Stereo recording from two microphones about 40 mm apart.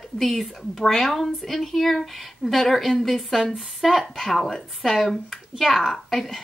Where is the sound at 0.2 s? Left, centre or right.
Centre.